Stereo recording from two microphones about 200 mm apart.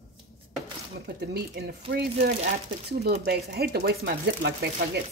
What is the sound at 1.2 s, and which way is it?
Speech, 55° right (ahead or behind).